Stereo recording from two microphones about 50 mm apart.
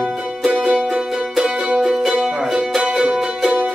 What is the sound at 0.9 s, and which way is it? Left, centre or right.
Music, centre.